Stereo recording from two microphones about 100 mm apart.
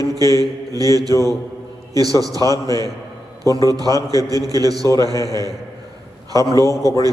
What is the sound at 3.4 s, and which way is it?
A man's voice, 40° right (ahead or behind).